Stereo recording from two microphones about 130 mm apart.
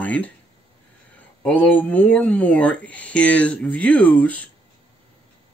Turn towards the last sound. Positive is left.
turn(degrees=10)  # may be behind; listen again after turning